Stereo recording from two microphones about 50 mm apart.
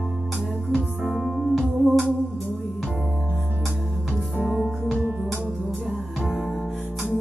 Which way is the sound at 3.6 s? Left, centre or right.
Centre.